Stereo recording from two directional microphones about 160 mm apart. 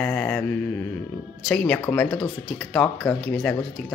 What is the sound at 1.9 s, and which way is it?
Speech, 5° left (ahead or behind).